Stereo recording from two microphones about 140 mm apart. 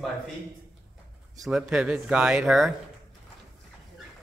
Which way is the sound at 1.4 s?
5° right (ahead or behind).